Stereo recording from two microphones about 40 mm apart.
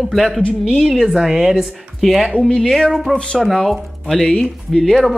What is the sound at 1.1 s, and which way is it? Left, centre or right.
Speech, centre.